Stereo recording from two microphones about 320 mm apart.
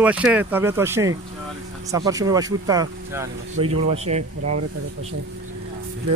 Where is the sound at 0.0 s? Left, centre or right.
Centre.